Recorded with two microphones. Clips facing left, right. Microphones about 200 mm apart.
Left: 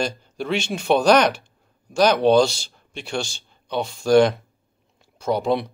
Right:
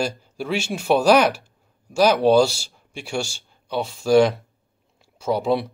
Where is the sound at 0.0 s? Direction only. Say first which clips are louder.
Even; 5° right (ahead or behind).